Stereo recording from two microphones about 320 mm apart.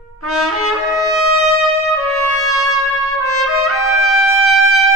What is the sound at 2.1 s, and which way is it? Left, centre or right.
Trumpet, right.